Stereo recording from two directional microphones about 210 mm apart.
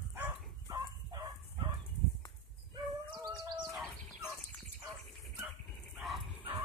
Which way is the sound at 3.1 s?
20° right (ahead or behind).